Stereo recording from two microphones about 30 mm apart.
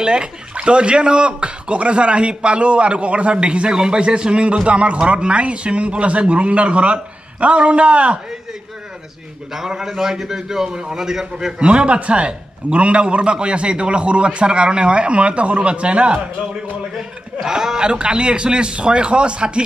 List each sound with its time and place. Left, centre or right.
0.0 s speech: right
3.7 s a man's voice: right
9.8 s a man's voice: centre
11.3 s speech: right
12.0 s a man's voice: right
17.7 s speech: right